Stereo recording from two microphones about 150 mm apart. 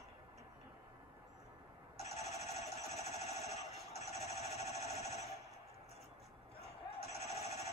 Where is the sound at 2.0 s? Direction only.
45° left (ahead or behind).